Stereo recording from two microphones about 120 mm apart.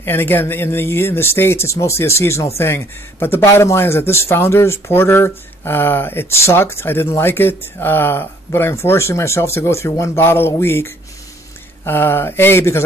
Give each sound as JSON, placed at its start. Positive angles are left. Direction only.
{"t": 0.0, "sound": "speech", "side_deg": 20}